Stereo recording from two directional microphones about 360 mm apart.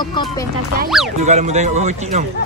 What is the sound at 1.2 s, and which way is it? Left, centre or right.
Speech, centre.